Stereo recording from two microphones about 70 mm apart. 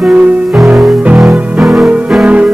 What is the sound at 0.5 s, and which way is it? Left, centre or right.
Music, centre.